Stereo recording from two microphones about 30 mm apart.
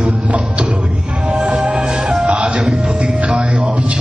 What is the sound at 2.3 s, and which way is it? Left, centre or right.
Music, right.